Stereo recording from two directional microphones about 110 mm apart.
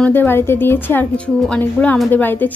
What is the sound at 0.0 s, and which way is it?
A woman's voice, 20° left (ahead or behind).